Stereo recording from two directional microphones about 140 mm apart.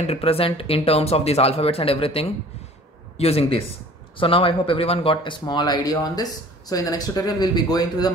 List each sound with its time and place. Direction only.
0.0 s speech: 45° left (ahead or behind); by 8.1 s 30° left (ahead or behind)